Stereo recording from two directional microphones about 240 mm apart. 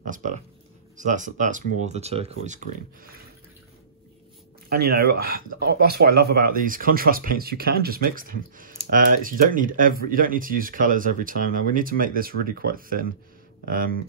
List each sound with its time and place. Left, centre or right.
0.0 s speech: right
4.6 s speech: right